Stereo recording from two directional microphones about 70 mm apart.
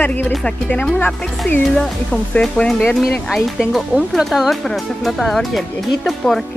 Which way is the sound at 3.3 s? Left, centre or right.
Centre.